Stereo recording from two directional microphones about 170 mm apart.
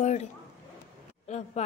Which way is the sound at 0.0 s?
40° left (ahead or behind).